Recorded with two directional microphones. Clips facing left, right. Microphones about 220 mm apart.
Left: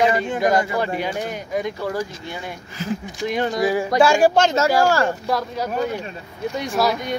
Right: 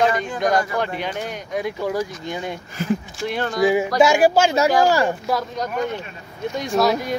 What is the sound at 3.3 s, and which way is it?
Speech, 20° left (ahead or behind).